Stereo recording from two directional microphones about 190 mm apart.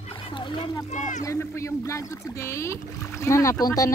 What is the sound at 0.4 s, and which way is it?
Speech, 25° left (ahead or behind).